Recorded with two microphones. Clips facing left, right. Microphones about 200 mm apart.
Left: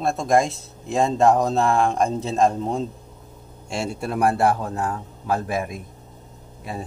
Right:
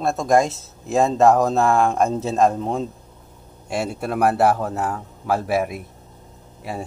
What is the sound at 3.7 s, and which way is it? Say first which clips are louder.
Speech: right 2 dB; 25° left (ahead or behind).